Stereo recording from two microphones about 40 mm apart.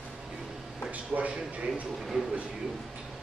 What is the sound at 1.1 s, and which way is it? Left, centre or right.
Speech, right.